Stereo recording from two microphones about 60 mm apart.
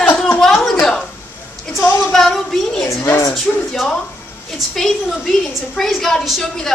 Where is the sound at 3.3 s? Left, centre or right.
Centre.